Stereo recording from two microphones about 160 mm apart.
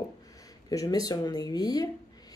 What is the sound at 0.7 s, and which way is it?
Speech, 20° left (ahead or behind).